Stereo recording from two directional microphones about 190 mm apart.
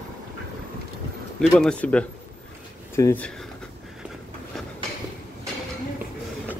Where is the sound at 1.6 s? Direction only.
5° left (ahead or behind).